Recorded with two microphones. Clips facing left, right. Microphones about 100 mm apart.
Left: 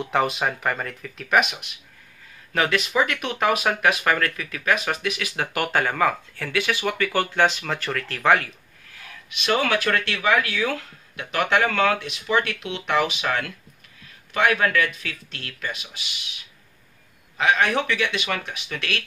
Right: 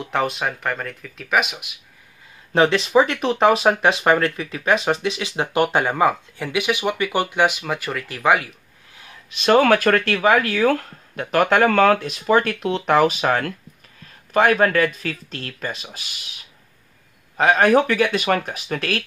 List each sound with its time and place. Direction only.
0.0 s speech: centre (ahead or behind)
2.5 s speech: 30° right (ahead or behind); by 8.5 s 10° right (ahead or behind)
9.3 s speech: 40° right (ahead or behind)
17.4 s speech: 40° right (ahead or behind)